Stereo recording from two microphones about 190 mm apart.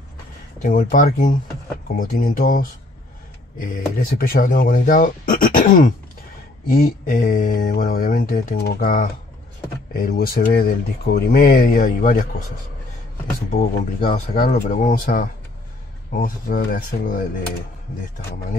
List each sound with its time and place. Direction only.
0.6 s speech: 45° left (ahead or behind)
13.5 s speech: 40° left (ahead or behind)